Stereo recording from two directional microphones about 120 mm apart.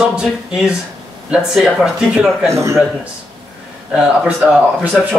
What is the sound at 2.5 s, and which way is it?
Speech, 25° right (ahead or behind).